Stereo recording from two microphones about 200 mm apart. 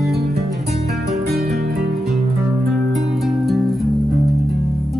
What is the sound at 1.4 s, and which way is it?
Music, 50° right (ahead or behind).